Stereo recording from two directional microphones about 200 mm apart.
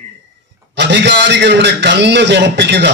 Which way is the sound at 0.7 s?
60° right (ahead or behind).